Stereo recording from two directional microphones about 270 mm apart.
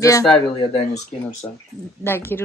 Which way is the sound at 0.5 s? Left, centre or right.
Left.